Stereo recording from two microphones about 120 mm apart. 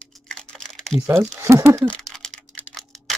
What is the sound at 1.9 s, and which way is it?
Typing, 5° left (ahead or behind).